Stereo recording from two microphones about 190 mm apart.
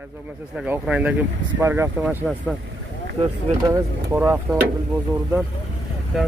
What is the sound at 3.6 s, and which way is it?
Speech, 15° right (ahead or behind).